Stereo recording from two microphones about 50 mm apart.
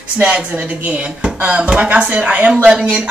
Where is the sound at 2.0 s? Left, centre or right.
Right.